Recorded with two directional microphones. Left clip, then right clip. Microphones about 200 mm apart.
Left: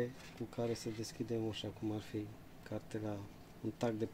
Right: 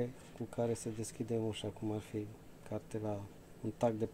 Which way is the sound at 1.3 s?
30° right (ahead or behind).